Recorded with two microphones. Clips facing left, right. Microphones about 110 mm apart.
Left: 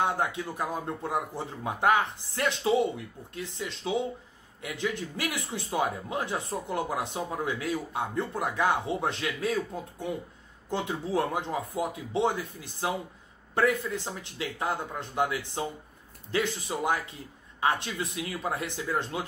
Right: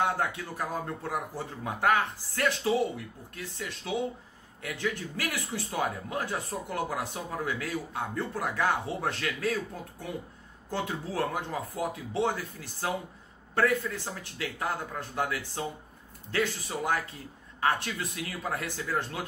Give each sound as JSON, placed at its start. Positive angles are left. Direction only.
{"t": 0.0, "sound": "a man's voice", "side_deg": 20}